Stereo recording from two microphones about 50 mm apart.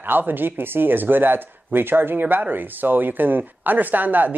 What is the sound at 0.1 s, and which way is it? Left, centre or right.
Speech, right.